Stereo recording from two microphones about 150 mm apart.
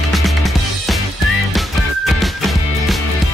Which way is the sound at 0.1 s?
Centre (ahead or behind).